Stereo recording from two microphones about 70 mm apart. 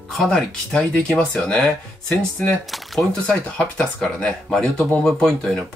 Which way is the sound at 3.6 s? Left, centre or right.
Centre.